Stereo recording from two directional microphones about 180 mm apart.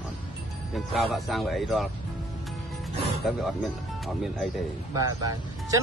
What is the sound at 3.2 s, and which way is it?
Speech, 5° right (ahead or behind).